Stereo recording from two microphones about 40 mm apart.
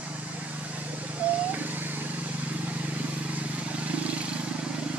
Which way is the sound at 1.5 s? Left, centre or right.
Right.